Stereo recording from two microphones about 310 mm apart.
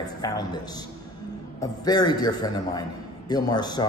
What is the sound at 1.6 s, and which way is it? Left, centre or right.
A man's voice, centre.